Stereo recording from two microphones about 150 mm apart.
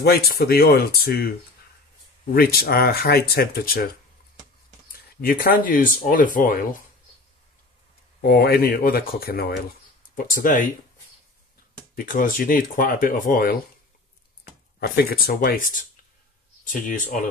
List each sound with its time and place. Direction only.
0.0 s speech: 90° left
2.3 s speech: 90° left
5.2 s speech: 75° left (ahead or behind)
8.2 s speech: 90° left
10.1 s speech: 65° left (ahead or behind)
11.9 s speech: 70° left (ahead or behind)
14.8 s speech: 90° left; by 15.8 s 70° left (ahead or behind)